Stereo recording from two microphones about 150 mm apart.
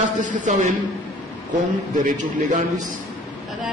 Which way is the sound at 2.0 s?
60° right (ahead or behind).